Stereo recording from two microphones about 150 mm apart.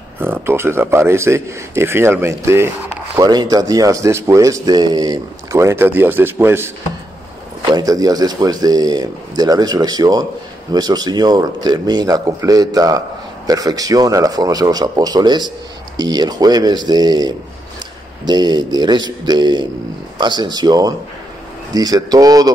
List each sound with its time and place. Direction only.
0.2 s a man's voice: 15° right (ahead or behind)
7.7 s speech: 25° right (ahead or behind)